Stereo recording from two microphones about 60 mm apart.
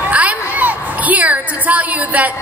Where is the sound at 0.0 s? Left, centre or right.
Right.